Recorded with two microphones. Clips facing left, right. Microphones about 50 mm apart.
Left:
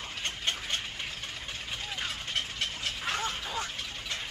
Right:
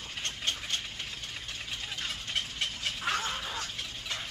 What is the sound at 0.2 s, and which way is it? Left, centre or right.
Vehicle, left.